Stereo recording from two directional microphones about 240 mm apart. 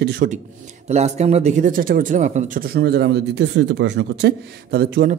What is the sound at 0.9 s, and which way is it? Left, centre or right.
A man's voice, right.